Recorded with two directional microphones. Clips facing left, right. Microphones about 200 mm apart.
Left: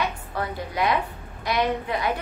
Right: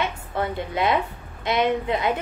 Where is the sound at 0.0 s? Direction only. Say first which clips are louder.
Right 2 dB; 25° right (ahead or behind).